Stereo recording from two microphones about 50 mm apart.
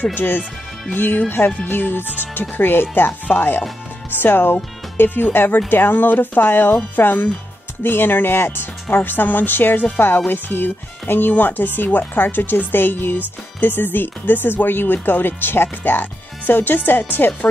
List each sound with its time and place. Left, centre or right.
0.1 s speech: left